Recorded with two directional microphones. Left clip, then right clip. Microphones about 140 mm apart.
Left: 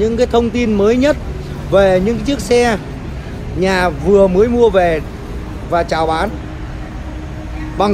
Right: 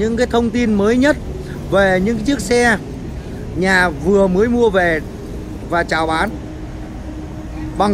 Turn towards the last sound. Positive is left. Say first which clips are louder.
# left 2 dB
turn(degrees=20)  # may be behind; listen again after turning